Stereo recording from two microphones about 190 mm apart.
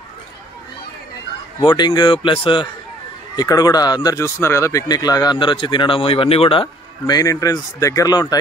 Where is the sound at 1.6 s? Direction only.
25° left (ahead or behind).